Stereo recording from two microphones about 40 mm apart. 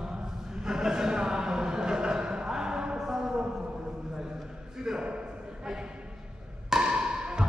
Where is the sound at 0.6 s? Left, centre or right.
Centre.